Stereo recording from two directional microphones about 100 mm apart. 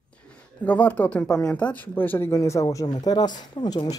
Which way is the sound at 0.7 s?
15° left (ahead or behind).